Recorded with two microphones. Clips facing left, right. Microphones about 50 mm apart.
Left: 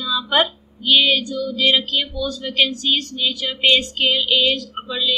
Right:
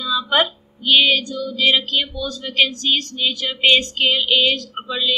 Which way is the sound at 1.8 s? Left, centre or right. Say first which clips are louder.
Even; right.